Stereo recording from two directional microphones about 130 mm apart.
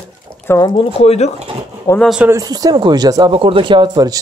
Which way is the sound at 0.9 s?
55° left (ahead or behind).